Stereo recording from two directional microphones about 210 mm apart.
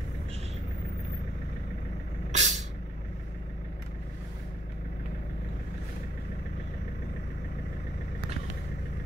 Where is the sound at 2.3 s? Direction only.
35° right (ahead or behind).